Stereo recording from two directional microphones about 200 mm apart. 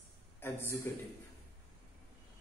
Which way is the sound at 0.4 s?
10° left (ahead or behind).